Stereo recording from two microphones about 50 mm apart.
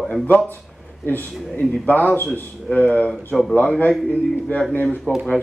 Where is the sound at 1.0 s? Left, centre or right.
Left.